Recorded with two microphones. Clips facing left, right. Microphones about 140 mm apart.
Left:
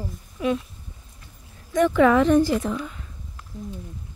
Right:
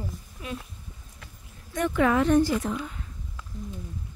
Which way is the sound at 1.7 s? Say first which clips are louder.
Left 6 dB; 90° left.